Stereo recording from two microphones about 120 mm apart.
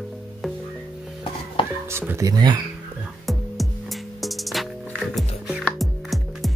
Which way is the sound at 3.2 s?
Centre (ahead or behind).